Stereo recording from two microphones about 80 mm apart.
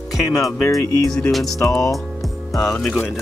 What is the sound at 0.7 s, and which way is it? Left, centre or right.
Speech, left.